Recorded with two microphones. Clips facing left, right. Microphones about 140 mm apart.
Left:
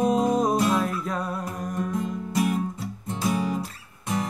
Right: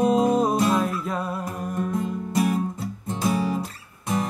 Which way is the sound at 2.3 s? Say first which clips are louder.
Right 2 dB; 35° right (ahead or behind).